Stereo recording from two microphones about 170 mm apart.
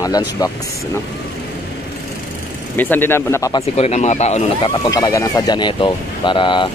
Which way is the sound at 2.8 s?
10° left (ahead or behind).